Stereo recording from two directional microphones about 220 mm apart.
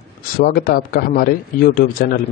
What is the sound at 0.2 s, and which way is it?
A man's voice, 45° left (ahead or behind).